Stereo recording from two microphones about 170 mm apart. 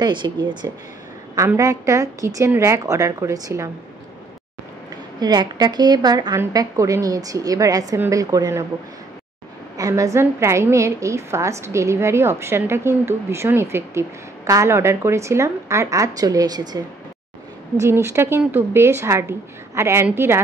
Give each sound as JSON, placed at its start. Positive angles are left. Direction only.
{"t": 0.0, "sound": "a woman's voice", "side_deg": -25}
{"t": 5.2, "sound": "a woman's voice", "side_deg": -25}
{"t": 9.8, "sound": "a woman's voice", "side_deg": -20}